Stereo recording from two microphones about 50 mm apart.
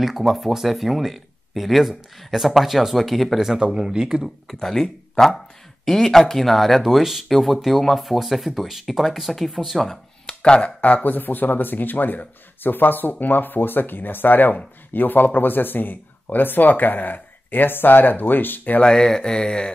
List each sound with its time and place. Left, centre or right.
0.0 s speech: centre
3.5 s speech: centre
4.5 s speech: centre
10.2 s a sound: centre
10.8 s speech: left
18.8 s speech: centre